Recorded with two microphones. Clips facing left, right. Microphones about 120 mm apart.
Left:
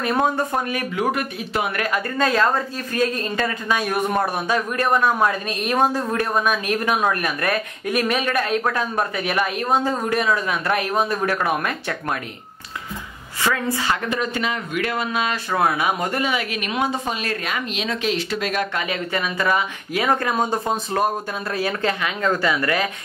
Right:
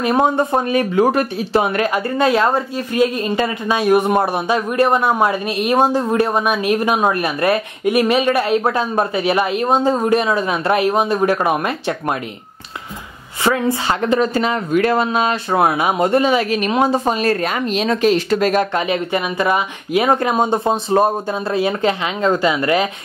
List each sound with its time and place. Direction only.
0.0 s speech: 20° right (ahead or behind)
13.4 s speech: 25° right (ahead or behind); by 18.7 s 40° right (ahead or behind)
18.8 s speech: 25° right (ahead or behind)